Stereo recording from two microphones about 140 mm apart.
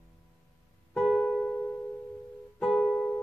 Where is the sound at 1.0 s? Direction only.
5° left (ahead or behind).